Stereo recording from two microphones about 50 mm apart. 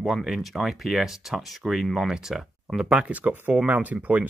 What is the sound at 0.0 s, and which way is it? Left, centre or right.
Speech, centre.